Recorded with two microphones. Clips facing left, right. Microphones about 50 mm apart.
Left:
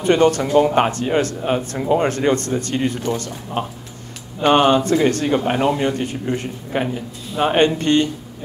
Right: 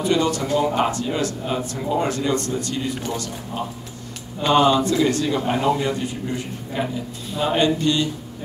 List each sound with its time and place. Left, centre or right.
0.0 s a man's voice: left